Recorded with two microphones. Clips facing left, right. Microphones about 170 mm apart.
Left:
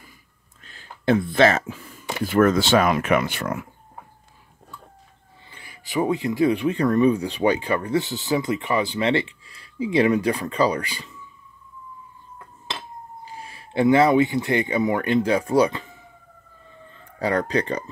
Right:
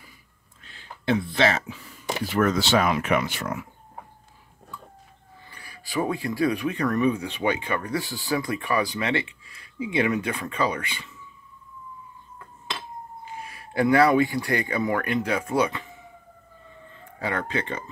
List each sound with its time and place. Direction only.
0.7 s speech: 45° left (ahead or behind)
5.5 s speech: 20° left (ahead or behind)
13.2 s speech: 30° left (ahead or behind)
17.2 s speech: 40° left (ahead or behind)